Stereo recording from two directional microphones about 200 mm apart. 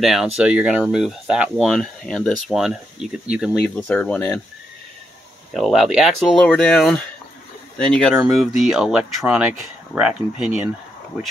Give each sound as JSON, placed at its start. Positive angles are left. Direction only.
{"t": 0.0, "sound": "speech", "side_deg": 0}
{"t": 5.5, "sound": "speech", "side_deg": 0}